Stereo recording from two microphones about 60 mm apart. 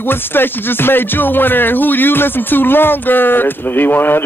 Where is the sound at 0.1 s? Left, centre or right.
Left.